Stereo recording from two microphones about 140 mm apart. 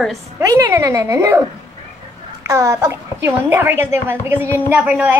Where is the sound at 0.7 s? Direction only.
20° right (ahead or behind).